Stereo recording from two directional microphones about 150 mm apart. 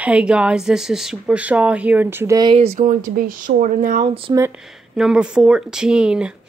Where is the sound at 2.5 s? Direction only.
45° right (ahead or behind).